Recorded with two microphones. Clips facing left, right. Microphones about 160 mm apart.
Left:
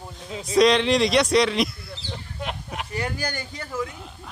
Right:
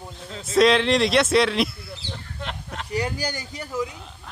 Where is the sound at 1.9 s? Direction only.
10° left (ahead or behind).